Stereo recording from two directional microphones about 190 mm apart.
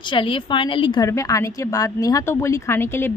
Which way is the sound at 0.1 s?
25° left (ahead or behind).